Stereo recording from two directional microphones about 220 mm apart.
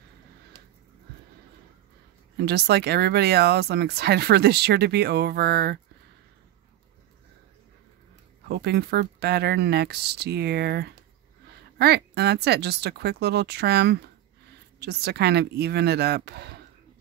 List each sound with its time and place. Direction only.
2.3 s speech: 50° right (ahead or behind)
8.5 s speech: 45° right (ahead or behind)